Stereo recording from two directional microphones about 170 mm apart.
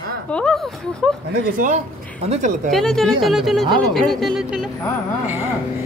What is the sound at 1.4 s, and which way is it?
Speech, 55° right (ahead or behind).